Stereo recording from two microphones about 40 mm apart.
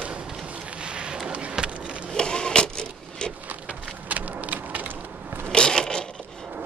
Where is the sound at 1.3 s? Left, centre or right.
Right.